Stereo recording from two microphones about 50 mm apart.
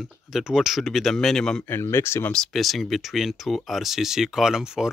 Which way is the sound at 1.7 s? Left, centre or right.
Left.